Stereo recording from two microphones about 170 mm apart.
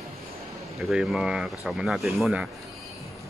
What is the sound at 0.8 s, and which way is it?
Speech, 5° right (ahead or behind).